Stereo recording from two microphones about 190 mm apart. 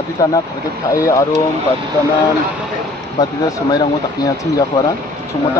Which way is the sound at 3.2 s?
20° left (ahead or behind).